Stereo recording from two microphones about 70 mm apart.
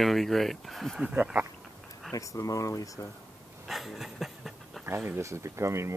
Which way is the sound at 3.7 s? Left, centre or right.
Centre.